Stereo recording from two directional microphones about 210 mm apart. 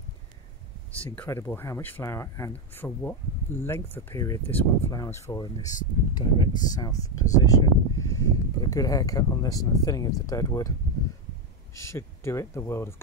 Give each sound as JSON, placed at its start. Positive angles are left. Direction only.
{"t": 0.9, "sound": "speech", "side_deg": 5}
{"t": 11.7, "sound": "speech", "side_deg": 15}